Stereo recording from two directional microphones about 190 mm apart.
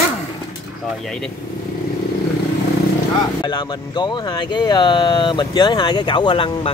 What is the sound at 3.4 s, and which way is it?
Speech, 25° left (ahead or behind).